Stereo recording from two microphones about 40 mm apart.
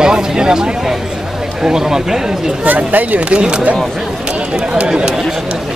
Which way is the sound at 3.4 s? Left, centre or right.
Right.